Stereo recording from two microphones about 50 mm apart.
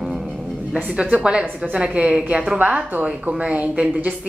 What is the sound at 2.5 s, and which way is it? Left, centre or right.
A woman's voice, right.